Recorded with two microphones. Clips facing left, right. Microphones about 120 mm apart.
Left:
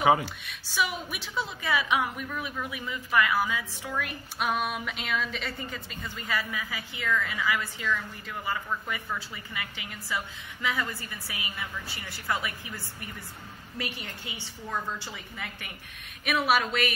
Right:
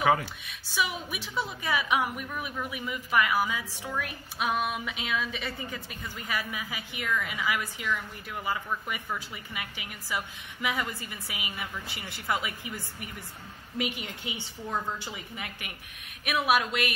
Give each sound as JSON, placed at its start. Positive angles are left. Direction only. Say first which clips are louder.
{"t": 0.2, "sound": "a woman's voice", "louder": "left 2 dB", "side_deg": 0}
{"t": 16.3, "sound": "a woman's voice", "louder": "left 1 dB", "side_deg": -5}